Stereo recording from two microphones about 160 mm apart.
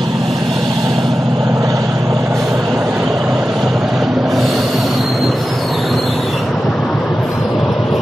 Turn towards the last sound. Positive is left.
turn(degrees=5)  # may be behind; listen again after turning